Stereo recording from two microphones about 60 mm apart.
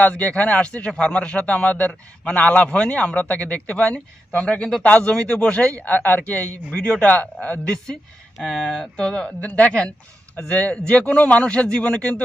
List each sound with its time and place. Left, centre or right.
0.0 s a man's voice: left